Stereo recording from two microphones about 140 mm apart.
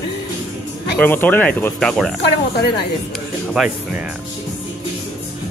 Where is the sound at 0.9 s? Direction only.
15° left (ahead or behind).